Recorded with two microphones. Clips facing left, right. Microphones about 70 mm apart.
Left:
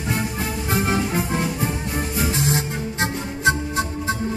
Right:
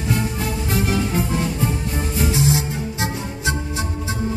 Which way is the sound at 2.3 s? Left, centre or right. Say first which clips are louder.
Right 3 dB; left.